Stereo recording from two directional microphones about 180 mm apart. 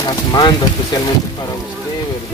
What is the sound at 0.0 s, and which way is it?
Speech, 25° left (ahead or behind).